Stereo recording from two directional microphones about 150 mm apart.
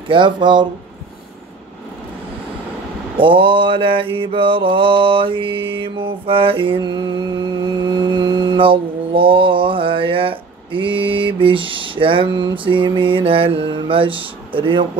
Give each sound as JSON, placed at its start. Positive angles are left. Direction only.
{"t": 0.1, "sound": "mantra", "side_deg": -30}
{"t": 3.2, "sound": "mantra", "side_deg": -35}